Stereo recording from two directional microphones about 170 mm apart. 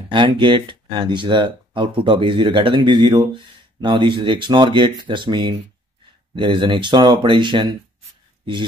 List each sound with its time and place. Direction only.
0.1 s speech: 30° right (ahead or behind)